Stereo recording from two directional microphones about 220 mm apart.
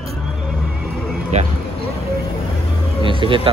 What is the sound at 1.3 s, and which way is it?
Speech, 30° right (ahead or behind).